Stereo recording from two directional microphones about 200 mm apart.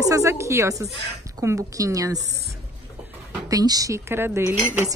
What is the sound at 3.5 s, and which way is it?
Speech, 20° right (ahead or behind).